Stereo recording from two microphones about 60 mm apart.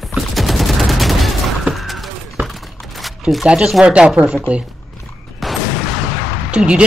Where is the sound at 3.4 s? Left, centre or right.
Centre.